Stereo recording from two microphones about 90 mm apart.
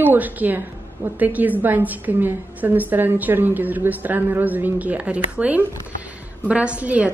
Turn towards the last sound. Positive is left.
turn(degrees=-15)  # may be behind; listen again after turning